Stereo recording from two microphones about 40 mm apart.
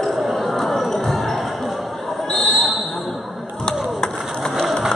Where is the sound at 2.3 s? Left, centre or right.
Centre.